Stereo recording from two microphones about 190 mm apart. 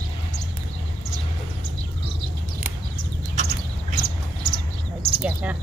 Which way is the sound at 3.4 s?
40° right (ahead or behind).